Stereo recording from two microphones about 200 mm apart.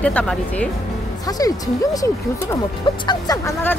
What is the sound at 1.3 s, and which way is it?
Speech, 15° left (ahead or behind).